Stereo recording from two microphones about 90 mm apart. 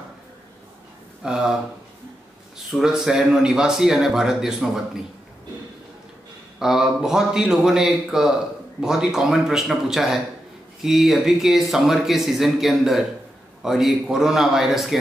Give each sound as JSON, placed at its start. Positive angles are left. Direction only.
{"t": 1.2, "sound": "speech", "side_deg": -5}
{"t": 2.7, "sound": "speech", "side_deg": -5}
{"t": 6.6, "sound": "speech", "side_deg": -5}